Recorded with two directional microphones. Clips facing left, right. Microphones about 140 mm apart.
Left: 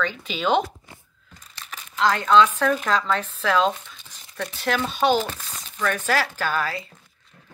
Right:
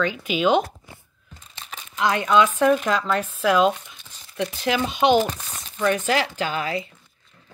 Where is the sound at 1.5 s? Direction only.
20° right (ahead or behind).